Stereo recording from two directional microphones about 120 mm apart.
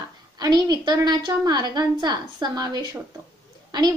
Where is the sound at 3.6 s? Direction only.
35° right (ahead or behind).